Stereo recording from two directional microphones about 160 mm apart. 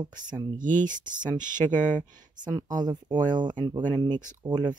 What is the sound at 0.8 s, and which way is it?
Speech, 55° right (ahead or behind).